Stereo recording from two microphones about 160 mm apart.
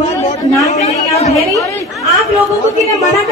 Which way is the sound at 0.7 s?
45° left (ahead or behind).